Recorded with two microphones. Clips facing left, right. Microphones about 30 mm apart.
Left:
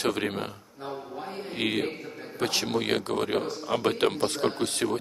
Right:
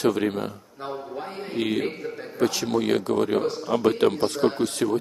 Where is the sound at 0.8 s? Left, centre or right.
Right.